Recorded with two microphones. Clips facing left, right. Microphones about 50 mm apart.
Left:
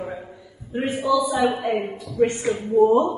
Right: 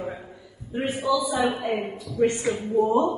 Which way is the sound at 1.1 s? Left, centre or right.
Centre.